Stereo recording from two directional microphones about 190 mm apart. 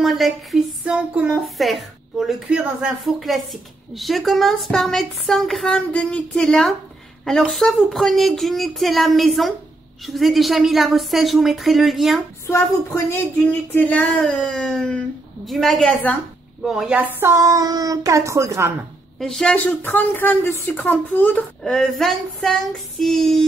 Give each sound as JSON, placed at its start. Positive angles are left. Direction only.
{"t": 0.0, "sound": "speech", "side_deg": 0}
{"t": 12.4, "sound": "a woman's voice", "side_deg": 15}
{"t": 19.1, "sound": "a woman's voice", "side_deg": 0}